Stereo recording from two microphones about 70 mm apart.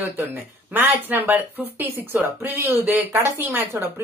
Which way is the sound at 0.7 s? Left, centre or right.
Right.